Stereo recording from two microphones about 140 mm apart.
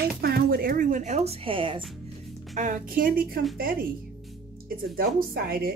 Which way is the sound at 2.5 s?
65° right (ahead or behind).